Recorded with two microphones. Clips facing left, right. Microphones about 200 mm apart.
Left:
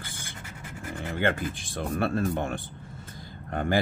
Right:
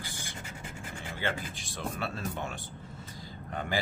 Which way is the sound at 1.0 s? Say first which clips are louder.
Left 8 dB; 55° left (ahead or behind).